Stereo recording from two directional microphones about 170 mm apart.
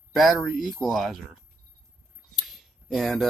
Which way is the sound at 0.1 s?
Centre (ahead or behind).